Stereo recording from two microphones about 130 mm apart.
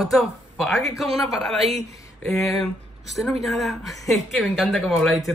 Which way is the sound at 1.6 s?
55° right (ahead or behind).